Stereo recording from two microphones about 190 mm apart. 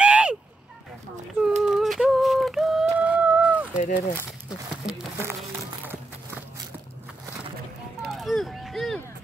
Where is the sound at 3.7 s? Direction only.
40° left (ahead or behind).